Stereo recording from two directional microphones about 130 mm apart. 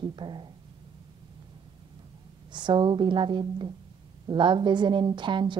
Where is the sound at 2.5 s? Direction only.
35° right (ahead or behind).